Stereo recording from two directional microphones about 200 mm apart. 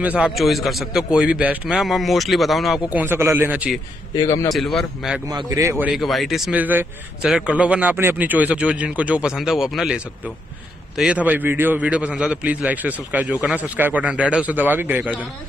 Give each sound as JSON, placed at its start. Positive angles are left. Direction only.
{"t": 0.0, "sound": "a man's voice", "side_deg": -5}
{"t": 4.1, "sound": "a man's voice", "side_deg": 20}
{"t": 4.5, "sound": "a man's voice", "side_deg": 0}
{"t": 5.3, "sound": "speech", "side_deg": -20}